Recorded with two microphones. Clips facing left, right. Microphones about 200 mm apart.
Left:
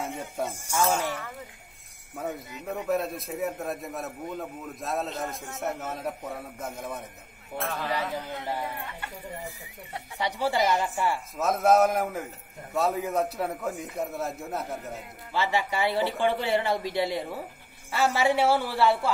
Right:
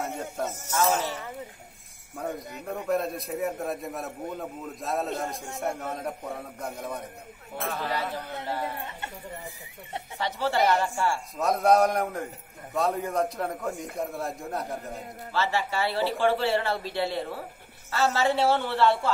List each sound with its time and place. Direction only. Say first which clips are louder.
0.0 s speech: right 1 dB; 10° left (ahead or behind)
2.6 s a man's voice: even; 5° left (ahead or behind)
7.8 s speech: left 1 dB; 10° left (ahead or behind)
10.1 s speech: even; 15° left (ahead or behind)
11.3 s a man's voice: even; centre (ahead or behind)
15.3 s speech: even; 15° left (ahead or behind)